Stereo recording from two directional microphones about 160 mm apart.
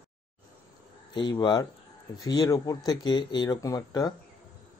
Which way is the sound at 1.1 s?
25° left (ahead or behind).